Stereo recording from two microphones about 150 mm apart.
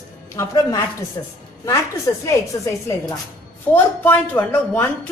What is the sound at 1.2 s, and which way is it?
Speech, 20° left (ahead or behind).